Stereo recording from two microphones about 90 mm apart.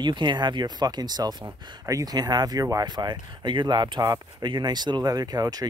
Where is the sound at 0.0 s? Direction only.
60° right (ahead or behind).